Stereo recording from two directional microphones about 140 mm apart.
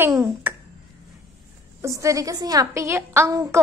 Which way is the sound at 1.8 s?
20° right (ahead or behind).